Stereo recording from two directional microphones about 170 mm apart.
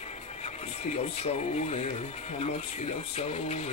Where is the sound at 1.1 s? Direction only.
40° left (ahead or behind).